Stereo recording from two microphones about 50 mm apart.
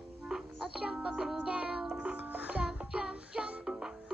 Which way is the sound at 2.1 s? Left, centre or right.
Right.